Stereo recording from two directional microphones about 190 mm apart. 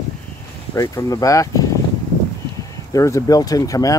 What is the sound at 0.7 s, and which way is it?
Speech, 20° left (ahead or behind).